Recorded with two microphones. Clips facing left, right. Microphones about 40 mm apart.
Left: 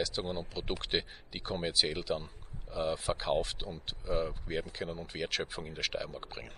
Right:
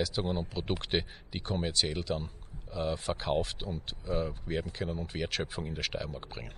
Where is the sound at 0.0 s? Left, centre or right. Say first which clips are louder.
Right 3 dB; centre.